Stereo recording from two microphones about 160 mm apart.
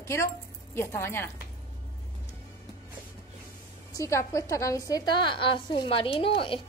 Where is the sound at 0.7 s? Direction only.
15° left (ahead or behind).